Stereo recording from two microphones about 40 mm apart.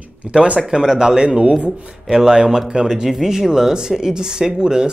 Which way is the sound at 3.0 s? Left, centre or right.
Centre.